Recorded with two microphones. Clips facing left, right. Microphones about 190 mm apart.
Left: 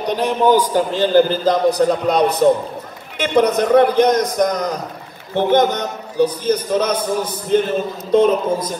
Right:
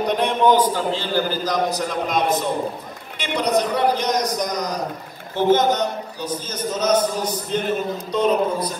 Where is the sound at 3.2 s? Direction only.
50° left (ahead or behind).